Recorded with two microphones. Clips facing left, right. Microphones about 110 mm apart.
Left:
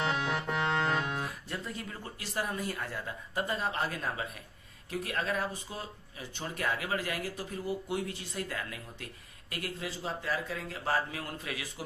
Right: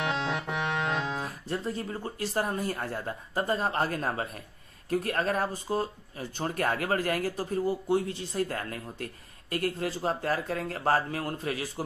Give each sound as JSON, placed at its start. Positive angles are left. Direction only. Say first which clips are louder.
{"t": 0.0, "sound": "music", "louder": "right 1 dB", "side_deg": -25}
{"t": 1.5, "sound": "speech", "louder": "right 7 dB", "side_deg": -35}